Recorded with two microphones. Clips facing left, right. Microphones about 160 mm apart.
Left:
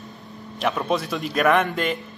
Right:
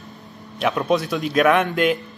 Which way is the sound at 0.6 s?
Centre (ahead or behind).